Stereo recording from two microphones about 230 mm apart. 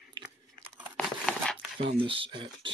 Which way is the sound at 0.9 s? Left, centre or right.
Centre.